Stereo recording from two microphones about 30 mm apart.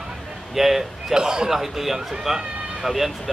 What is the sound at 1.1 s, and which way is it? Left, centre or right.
Speech, right.